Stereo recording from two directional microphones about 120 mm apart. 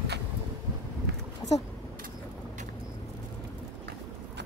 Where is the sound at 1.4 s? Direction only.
35° left (ahead or behind).